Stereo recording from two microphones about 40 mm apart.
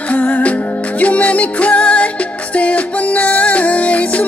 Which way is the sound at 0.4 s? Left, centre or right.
Left.